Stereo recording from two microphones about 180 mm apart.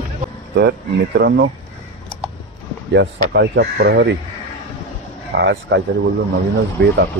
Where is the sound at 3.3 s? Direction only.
70° right (ahead or behind).